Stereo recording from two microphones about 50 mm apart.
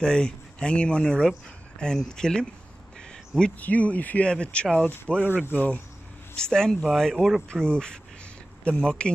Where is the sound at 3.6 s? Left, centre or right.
Left.